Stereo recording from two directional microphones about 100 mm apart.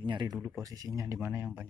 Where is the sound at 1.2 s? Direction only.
25° right (ahead or behind).